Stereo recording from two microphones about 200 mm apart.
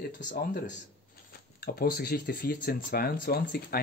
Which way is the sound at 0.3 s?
40° left (ahead or behind).